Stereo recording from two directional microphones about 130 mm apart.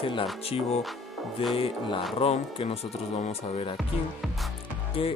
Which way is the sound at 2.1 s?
50° left (ahead or behind).